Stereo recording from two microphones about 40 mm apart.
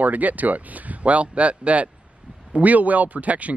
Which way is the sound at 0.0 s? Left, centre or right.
Right.